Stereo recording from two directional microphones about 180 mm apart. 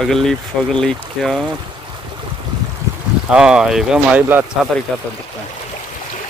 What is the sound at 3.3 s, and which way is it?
Speech, 5° right (ahead or behind).